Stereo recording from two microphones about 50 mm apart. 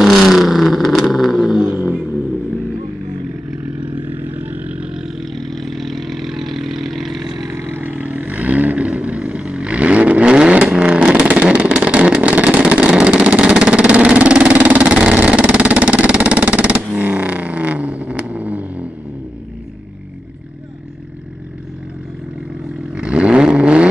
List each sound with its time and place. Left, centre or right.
0.0 s vehicle: centre
4.0 s vehicle: right; by 5.2 s centre
5.3 s vehicle: centre
7.4 s vehicle: right
7.8 s vehicle: right
23.0 s vehicle: right